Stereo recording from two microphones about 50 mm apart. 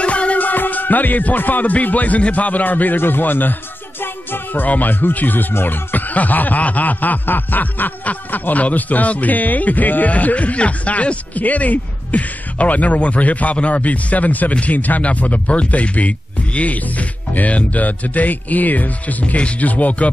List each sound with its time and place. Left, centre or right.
0.0 s speech: left
3.0 s snicker: left
4.0 s music: left
4.6 s snicker: left